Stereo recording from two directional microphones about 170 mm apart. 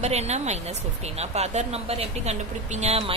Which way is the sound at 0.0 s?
40° right (ahead or behind).